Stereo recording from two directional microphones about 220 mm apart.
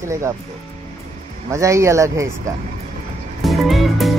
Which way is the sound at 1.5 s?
15° right (ahead or behind).